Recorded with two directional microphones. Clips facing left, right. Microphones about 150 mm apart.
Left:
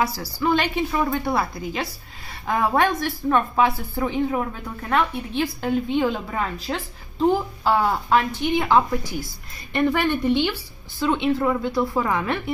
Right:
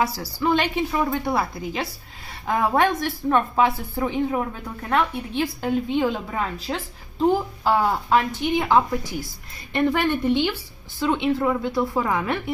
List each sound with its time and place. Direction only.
0.0 s a woman's voice: 25° right (ahead or behind)
5.6 s a woman's voice: 15° right (ahead or behind)